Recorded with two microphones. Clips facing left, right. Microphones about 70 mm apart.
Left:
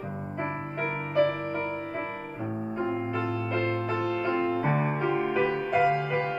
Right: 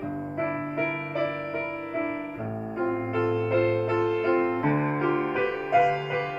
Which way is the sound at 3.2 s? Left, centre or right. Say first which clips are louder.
Right 5 dB; centre.